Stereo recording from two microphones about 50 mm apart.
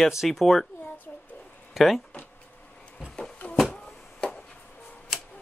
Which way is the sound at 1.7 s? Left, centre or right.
Centre.